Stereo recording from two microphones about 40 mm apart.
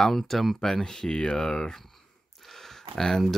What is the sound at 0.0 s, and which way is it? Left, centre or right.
Speech, centre.